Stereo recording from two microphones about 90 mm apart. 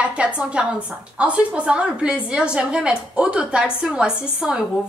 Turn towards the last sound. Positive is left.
turn(degrees=-10)  # may be behind; listen again after turning